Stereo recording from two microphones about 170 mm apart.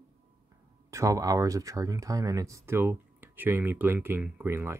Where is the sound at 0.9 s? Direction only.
20° right (ahead or behind).